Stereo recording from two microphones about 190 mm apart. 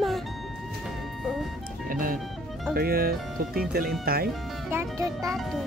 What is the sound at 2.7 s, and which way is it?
Speech, 55° right (ahead or behind).